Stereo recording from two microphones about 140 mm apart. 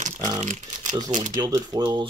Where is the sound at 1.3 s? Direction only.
30° right (ahead or behind).